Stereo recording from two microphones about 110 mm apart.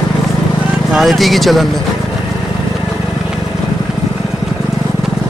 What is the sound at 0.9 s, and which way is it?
Speech, centre (ahead or behind).